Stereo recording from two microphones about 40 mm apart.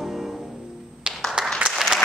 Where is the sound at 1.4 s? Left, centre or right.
Centre.